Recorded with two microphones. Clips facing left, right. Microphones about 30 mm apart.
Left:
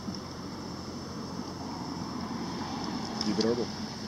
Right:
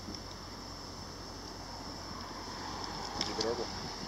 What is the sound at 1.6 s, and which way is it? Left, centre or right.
Vehicle, centre.